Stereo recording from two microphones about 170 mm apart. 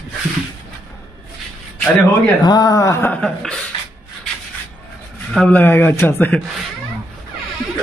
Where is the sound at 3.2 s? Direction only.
5° left (ahead or behind).